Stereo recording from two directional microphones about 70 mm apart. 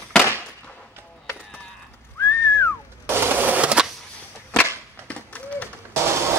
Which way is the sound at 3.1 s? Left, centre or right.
Right.